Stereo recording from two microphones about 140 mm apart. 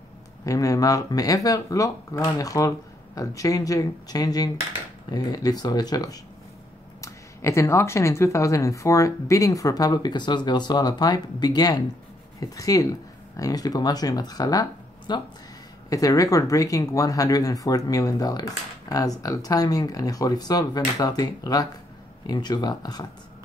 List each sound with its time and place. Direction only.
0.5 s speech: 25° left (ahead or behind)